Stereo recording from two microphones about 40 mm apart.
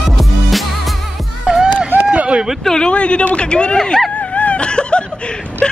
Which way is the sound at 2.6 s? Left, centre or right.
Centre.